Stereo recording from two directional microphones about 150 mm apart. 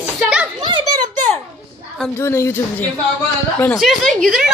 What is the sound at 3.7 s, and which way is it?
Speech, centre (ahead or behind).